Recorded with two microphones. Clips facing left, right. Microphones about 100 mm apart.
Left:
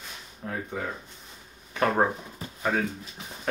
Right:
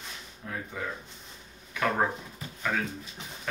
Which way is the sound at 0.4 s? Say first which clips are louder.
Left 4 dB; 40° left (ahead or behind).